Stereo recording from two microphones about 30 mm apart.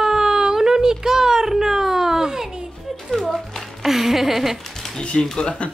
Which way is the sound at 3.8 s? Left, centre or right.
Centre.